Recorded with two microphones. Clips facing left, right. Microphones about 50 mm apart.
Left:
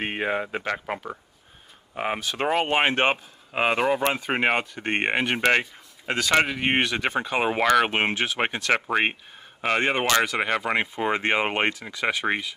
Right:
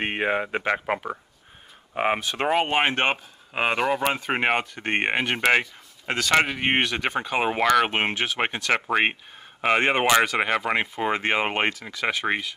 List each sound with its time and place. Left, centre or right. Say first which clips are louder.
0.0 s speech: right 2 dB; centre
4.6 s speech: right 1 dB; centre
5.3 s speech: right 2 dB; centre
6.8 s speech: even; centre
9.7 s speech: right 2 dB; centre